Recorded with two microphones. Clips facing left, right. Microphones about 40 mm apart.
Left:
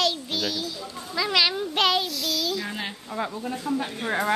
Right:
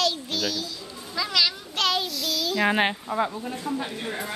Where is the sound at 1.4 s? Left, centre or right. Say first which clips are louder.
Left 2 dB; left.